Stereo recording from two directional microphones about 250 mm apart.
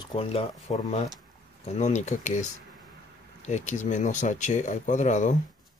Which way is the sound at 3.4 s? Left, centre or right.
Left.